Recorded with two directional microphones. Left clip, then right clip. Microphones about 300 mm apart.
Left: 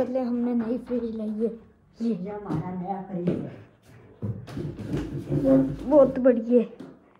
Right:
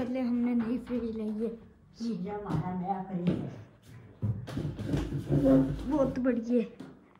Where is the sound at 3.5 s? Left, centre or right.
Centre.